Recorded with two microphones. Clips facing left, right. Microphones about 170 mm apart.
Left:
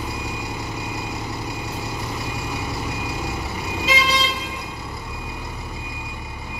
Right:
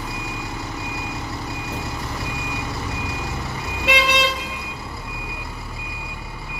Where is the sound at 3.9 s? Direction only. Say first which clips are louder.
Right 3 dB; 65° right (ahead or behind).